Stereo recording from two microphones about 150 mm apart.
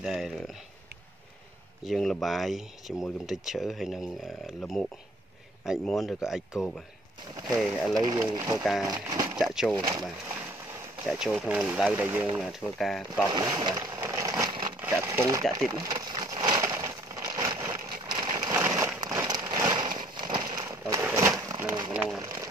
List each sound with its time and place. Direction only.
0.0 s speech: centre (ahead or behind)
1.9 s speech: centre (ahead or behind)
7.6 s speech: centre (ahead or behind)
8.3 s speech: 25° right (ahead or behind)
8.6 s speech: centre (ahead or behind)
8.9 s speech: 25° right (ahead or behind)
9.4 s speech: 5° right (ahead or behind)
11.1 s speech: 5° right (ahead or behind)
13.3 s a sound: 25° right (ahead or behind)
18.9 s rain on surface: 25° right (ahead or behind)
20.2 s a sound: 30° right (ahead or behind)
21.0 s a sound: 15° right (ahead or behind)
22.2 s a sound: 20° right (ahead or behind)